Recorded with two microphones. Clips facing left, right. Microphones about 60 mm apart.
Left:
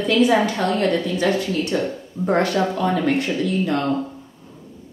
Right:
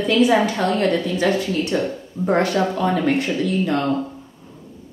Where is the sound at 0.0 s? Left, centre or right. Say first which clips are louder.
Right 1 dB; centre.